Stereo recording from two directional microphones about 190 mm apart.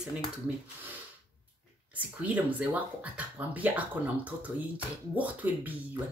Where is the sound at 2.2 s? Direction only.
5° right (ahead or behind).